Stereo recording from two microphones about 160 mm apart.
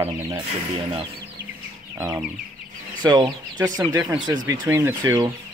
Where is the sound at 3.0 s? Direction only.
25° right (ahead or behind).